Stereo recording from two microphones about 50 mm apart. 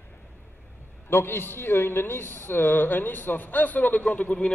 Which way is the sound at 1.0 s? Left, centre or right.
Left.